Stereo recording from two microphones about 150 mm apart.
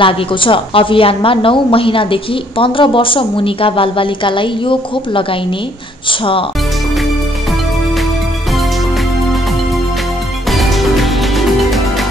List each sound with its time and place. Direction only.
0.0 s a woman's voice: 35° left (ahead or behind)
10.5 s music: centre (ahead or behind)